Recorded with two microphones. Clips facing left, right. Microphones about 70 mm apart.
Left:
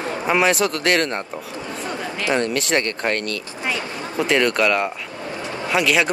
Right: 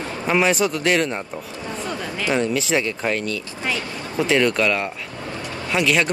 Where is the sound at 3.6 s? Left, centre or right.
Centre.